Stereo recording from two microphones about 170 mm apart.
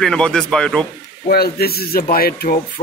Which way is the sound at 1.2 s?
65° left (ahead or behind).